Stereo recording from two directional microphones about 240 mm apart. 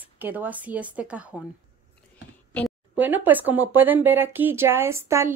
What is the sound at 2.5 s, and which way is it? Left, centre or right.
Speech, centre.